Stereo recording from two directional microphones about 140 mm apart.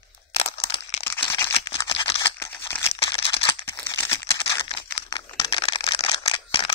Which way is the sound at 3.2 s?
40° left (ahead or behind).